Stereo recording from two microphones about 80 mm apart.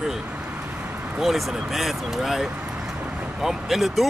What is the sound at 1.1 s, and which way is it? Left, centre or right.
Speech, centre.